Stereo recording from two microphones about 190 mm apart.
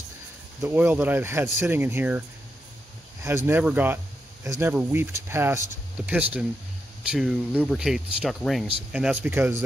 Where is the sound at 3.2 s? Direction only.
10° right (ahead or behind).